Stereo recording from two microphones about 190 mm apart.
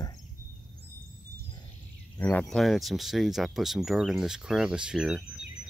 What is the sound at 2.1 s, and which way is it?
Speech, 10° left (ahead or behind).